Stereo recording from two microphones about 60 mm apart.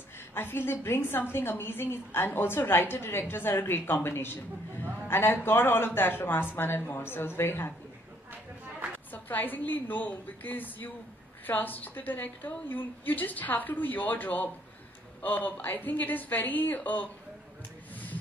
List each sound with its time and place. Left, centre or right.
0.3 s a woman's voice: left
9.1 s a woman's voice: left